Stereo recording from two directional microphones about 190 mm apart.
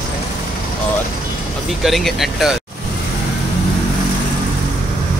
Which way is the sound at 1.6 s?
Centre (ahead or behind).